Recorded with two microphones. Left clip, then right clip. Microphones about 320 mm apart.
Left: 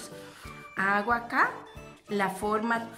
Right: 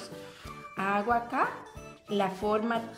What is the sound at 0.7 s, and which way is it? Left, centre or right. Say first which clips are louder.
A woman's voice: left 2 dB; centre.